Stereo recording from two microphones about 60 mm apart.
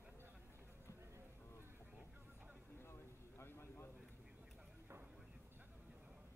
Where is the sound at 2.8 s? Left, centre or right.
Left.